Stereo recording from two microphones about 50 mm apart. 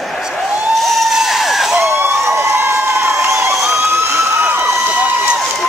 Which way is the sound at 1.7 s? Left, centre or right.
Right.